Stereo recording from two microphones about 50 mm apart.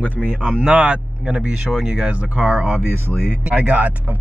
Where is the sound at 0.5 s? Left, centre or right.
Right.